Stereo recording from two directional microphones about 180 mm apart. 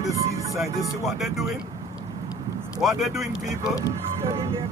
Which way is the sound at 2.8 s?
Centre (ahead or behind).